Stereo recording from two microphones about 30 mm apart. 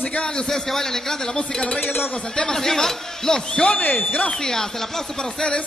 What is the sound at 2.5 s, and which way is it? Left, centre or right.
A man's voice, centre.